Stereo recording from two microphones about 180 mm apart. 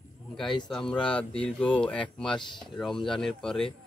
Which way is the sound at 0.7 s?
5° left (ahead or behind).